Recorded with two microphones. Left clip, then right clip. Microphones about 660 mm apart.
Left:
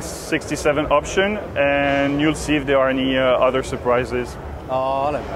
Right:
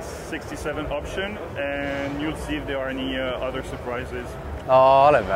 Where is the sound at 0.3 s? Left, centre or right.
Left.